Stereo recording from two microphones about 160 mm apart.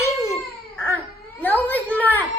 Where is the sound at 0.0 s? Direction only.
15° left (ahead or behind).